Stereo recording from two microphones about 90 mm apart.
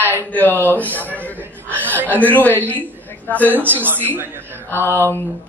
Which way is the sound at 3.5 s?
20° right (ahead or behind).